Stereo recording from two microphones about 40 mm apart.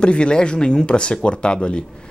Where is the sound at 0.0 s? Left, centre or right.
Left.